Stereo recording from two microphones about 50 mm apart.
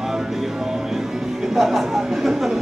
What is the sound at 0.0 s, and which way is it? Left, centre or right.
Music, centre.